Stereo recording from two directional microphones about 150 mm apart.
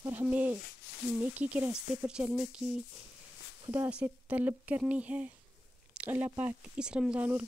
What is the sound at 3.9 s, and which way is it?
Speech, 10° right (ahead or behind).